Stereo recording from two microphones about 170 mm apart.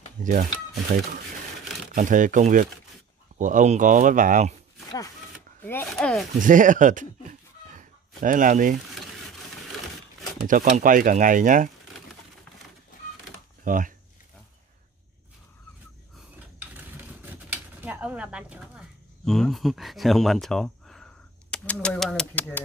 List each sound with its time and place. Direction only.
0.2 s speech: 50° right (ahead or behind)
5.6 s speech: 10° left (ahead or behind)
6.4 s a sound: 50° right (ahead or behind)
8.2 s speech: 50° right (ahead or behind)
10.4 s speech: 50° right (ahead or behind)
13.7 s speech: 50° right (ahead or behind)
16.7 s a sound: 10° right (ahead or behind); by 22.6 s 10° left (ahead or behind)